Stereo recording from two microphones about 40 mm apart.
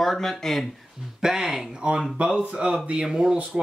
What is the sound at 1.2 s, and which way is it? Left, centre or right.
Speech, centre.